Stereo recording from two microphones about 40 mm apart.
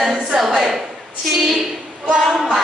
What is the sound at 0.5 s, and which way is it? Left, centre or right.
Speech, centre.